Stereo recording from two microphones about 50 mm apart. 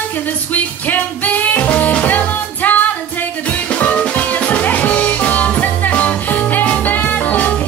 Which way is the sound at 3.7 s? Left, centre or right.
Left.